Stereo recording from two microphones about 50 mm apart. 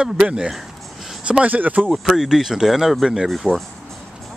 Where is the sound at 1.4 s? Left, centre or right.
Right.